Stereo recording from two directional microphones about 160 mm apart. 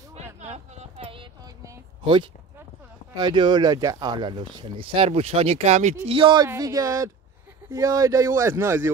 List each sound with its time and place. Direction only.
0.1 s a sound: 45° right (ahead or behind)
3.2 s speech: 30° right (ahead or behind); by 5.9 s 45° right (ahead or behind)
6.0 s a man's voice: 35° right (ahead or behind); by 8.9 s 15° right (ahead or behind)